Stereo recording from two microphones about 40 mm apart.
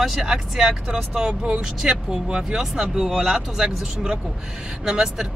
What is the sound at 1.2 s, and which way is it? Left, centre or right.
Speech, right.